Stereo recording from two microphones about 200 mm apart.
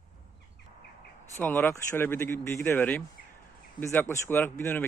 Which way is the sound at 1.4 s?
10° left (ahead or behind).